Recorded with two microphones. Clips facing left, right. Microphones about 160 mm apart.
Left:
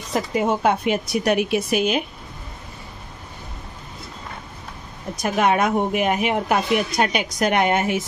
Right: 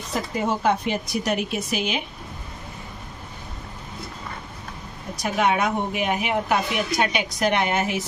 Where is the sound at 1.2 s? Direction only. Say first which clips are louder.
Left 5 dB; 65° left (ahead or behind).